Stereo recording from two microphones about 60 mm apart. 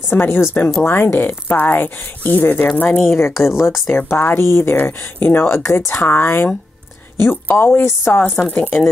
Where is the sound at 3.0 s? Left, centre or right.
Left.